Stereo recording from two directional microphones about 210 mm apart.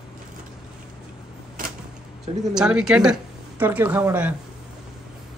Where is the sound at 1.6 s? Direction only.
40° right (ahead or behind).